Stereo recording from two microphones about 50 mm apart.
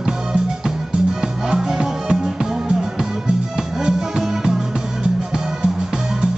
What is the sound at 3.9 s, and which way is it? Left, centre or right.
Music, centre.